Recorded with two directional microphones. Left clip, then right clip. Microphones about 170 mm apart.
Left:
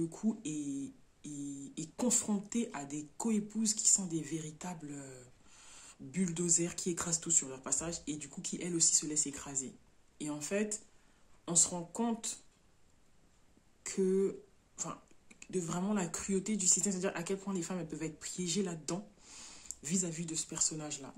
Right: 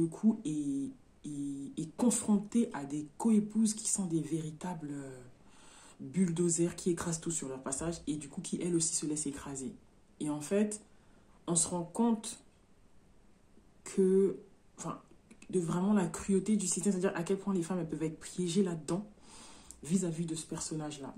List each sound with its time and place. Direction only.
0.0 s speech: 10° left (ahead or behind)
13.8 s speech: 10° left (ahead or behind)